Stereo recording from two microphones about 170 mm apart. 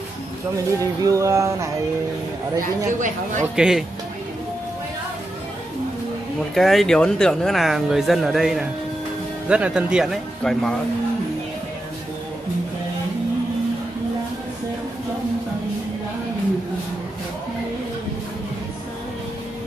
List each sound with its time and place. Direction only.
1.0 s a sound: 20° right (ahead or behind)
2.6 s speech: 50° right (ahead or behind)
3.5 s speech: 5° right (ahead or behind)
6.5 s speech: centre (ahead or behind)